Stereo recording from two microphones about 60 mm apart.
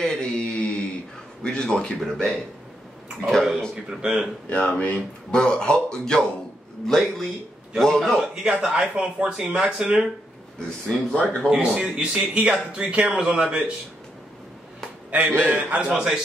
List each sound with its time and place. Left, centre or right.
0.0 s mantra: centre
0.4 s a sound: left
1.4 s a man's voice: centre
2.0 s speech: centre
4.0 s speech: centre
4.5 s speech: left
5.3 s a man's voice: centre
8.2 s speech: centre
11.1 s speech: left
11.6 s speech: centre
15.0 s a man's voice: right
15.9 s speech: centre